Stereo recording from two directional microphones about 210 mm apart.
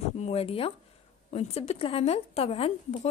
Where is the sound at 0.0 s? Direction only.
30° left (ahead or behind).